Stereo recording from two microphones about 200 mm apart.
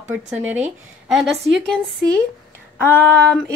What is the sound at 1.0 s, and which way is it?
Speech, centre (ahead or behind).